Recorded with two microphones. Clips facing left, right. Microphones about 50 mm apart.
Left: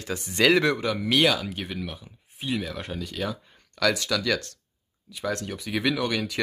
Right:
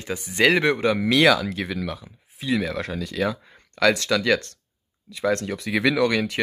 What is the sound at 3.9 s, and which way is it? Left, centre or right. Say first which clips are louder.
Speech: right 5 dB; right.